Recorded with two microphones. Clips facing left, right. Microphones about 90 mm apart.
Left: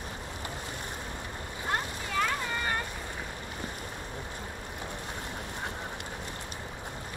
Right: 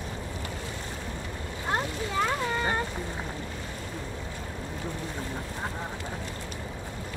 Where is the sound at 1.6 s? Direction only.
20° right (ahead or behind).